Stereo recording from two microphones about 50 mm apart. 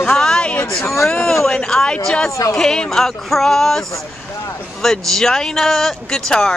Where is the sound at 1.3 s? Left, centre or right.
Centre.